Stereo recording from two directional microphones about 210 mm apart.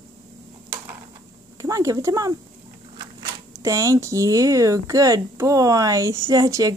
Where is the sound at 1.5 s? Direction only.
15° right (ahead or behind).